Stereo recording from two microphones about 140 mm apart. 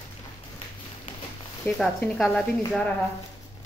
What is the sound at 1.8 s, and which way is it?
A woman's voice, 5° left (ahead or behind).